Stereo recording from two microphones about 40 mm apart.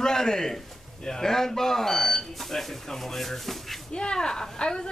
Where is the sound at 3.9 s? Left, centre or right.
Centre.